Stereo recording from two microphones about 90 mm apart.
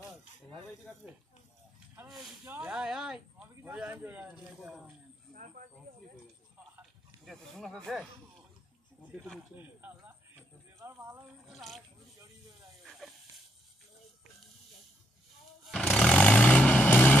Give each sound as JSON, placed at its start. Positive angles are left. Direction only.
{"t": 2.6, "sound": "speech", "side_deg": -5}
{"t": 7.2, "sound": "speech", "side_deg": 0}
{"t": 9.6, "sound": "speech", "side_deg": -20}
{"t": 11.4, "sound": "speech", "side_deg": 0}
{"t": 12.8, "sound": "a sound", "side_deg": 0}
{"t": 15.8, "sound": "vehicle", "side_deg": 10}